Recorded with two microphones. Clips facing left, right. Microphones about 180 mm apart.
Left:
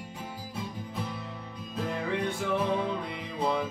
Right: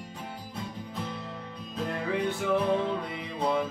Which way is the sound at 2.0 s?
5° right (ahead or behind).